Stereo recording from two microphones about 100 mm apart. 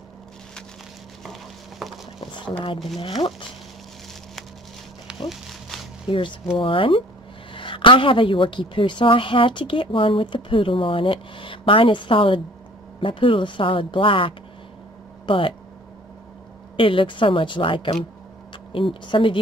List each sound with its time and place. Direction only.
1.2 s stir: centre (ahead or behind)
2.1 s a sound: 55° left (ahead or behind)
2.6 s a woman's voice: 60° left (ahead or behind)
5.3 s a sound: centre (ahead or behind)
6.0 s a woman's voice: 60° left (ahead or behind)
16.7 s a woman's voice: 60° left (ahead or behind)